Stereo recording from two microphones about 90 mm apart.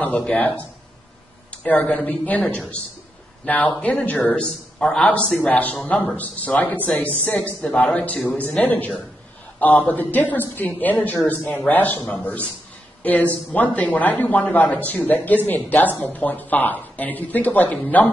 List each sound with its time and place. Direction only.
0.0 s speech: 15° left (ahead or behind)
1.5 s speech: 15° left (ahead or behind)